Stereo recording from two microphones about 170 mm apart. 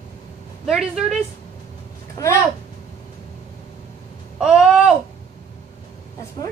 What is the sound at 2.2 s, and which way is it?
Speech, 20° left (ahead or behind).